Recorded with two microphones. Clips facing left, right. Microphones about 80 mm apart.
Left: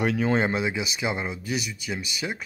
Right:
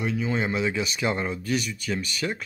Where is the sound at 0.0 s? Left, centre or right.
Left.